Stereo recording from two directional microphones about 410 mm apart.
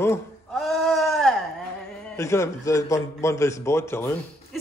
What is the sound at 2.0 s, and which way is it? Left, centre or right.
A man's voice, centre.